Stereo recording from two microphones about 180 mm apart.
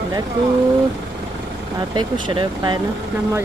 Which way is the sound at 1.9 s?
25° right (ahead or behind).